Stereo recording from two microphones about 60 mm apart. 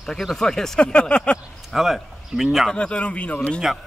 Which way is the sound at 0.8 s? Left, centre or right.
Centre.